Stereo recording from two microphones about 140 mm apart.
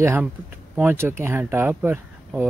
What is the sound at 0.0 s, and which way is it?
Speech, 20° right (ahead or behind).